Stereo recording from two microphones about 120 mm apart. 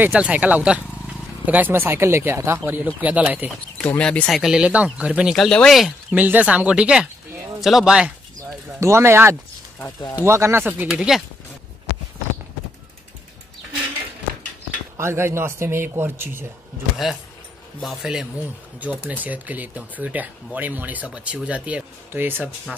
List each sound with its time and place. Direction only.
0.0 s speech: 10° right (ahead or behind)
4.0 s speech: 10° left (ahead or behind)
4.4 s speech: 5° right (ahead or behind)
5.3 s speech: 5° left (ahead or behind)
6.1 s speech: 15° right (ahead or behind)
8.7 s speech: 25° right (ahead or behind)
10.9 s speech: 5° right (ahead or behind)
15.0 s speech: 20° right (ahead or behind)
16.9 s speech: centre (ahead or behind); by 22.5 s 15° right (ahead or behind)